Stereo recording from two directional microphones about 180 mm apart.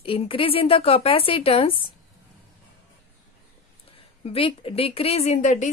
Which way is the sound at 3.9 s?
30° left (ahead or behind).